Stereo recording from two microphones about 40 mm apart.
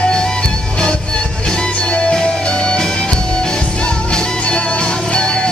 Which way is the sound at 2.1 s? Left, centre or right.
Centre.